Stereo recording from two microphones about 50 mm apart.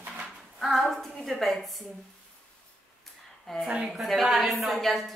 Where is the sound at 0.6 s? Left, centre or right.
Centre.